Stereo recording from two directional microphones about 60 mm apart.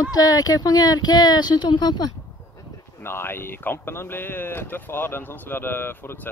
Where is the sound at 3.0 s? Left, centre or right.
Left.